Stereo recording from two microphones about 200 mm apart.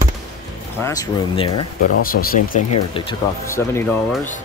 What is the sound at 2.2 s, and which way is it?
Speech, 45° left (ahead or behind).